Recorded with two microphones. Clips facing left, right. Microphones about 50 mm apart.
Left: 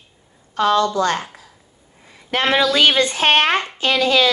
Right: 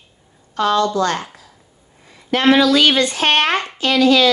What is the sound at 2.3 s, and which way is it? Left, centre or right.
A woman's voice, left.